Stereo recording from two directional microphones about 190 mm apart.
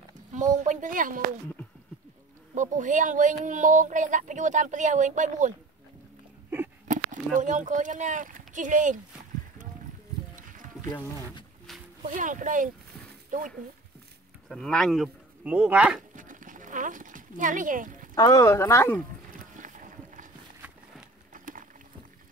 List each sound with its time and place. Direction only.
0.3 s speech: 40° right (ahead or behind)
2.5 s speech: 40° right (ahead or behind)
6.9 s speech: 40° right (ahead or behind)
10.3 s boat: 45° right (ahead or behind)
12.0 s speech: 40° right (ahead or behind)
14.5 s speech: 5° left (ahead or behind)
16.2 s horse: 45° right (ahead or behind)
18.1 s speech: 20° left (ahead or behind)
19.3 s boat: 45° right (ahead or behind)
21.3 s a sound: 45° right (ahead or behind)